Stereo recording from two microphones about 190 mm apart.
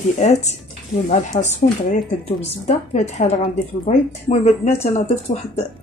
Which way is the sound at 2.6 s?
35° left (ahead or behind).